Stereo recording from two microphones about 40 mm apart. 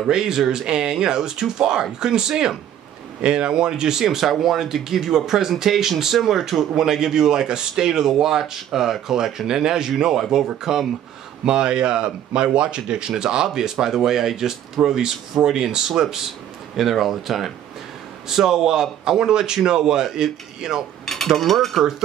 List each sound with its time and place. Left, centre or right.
0.0 s a man's voice: centre
4.0 s a man's voice: centre
16.7 s a man's voice: centre
21.0 s a sound: centre
21.3 s speech: centre